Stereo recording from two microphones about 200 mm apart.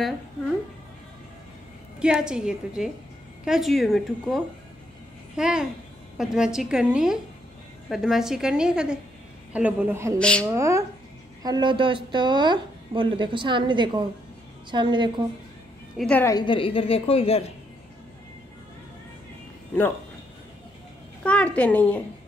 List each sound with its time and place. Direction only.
2.0 s a woman's voice: 5° right (ahead or behind)
10.1 s a woman's voice: 5° left (ahead or behind)
10.5 s a woman's voice: 15° right (ahead or behind)
16.0 s a woman's voice: 10° left (ahead or behind)
16.3 s a woman's voice: 25° left (ahead or behind)
21.2 s a woman's voice: 5° left (ahead or behind)